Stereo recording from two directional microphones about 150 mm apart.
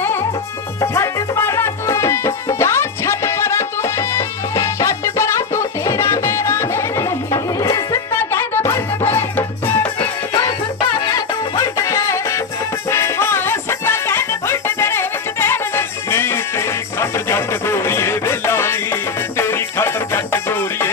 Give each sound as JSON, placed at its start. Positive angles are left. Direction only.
{"t": 0.9, "sound": "music", "side_deg": 20}
{"t": 11.1, "sound": "music", "side_deg": 20}